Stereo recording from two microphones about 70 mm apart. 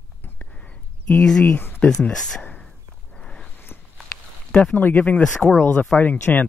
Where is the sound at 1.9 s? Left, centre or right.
Centre.